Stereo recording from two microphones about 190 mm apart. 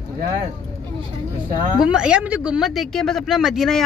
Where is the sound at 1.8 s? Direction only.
5° right (ahead or behind).